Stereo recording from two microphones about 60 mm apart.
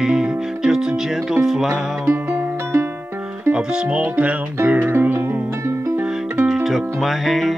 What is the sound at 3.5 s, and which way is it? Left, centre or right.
Music, centre.